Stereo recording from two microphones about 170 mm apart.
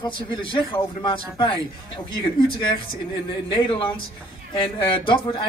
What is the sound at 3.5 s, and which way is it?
A man's voice, 30° left (ahead or behind).